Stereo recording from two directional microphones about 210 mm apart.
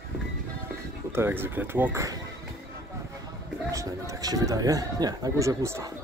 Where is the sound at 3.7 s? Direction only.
15° right (ahead or behind).